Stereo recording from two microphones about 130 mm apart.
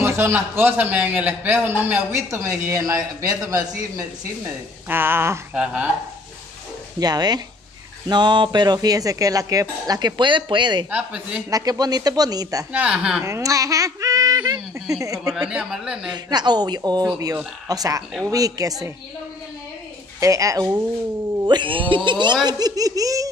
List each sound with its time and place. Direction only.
0.0 s a man's voice: 20° right (ahead or behind)
4.8 s a man's voice: 15° right (ahead or behind)
5.5 s a man's voice: 5° right (ahead or behind)
7.0 s speech: 30° right (ahead or behind)
10.9 s a man's voice: 10° right (ahead or behind)
11.5 s speech: 30° right (ahead or behind)
12.7 s a man's voice: 10° right (ahead or behind)
13.2 s speech: 25° right (ahead or behind)
15.3 s speech: 5° right (ahead or behind)
16.1 s speech: 35° right (ahead or behind)
20.2 s speech: 25° right (ahead or behind)
21.5 s speech: 40° right (ahead or behind)